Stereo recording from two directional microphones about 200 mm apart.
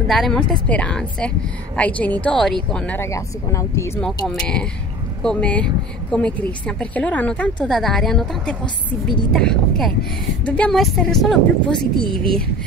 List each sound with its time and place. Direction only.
0.1 s a woman's voice: centre (ahead or behind)
5.2 s a woman's voice: 5° left (ahead or behind)